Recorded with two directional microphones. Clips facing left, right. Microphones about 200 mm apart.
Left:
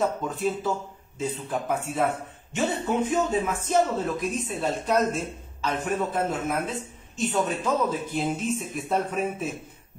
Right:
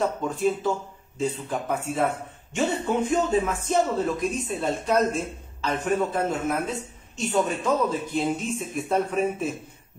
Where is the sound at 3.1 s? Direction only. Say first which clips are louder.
Right 2 dB; centre (ahead or behind).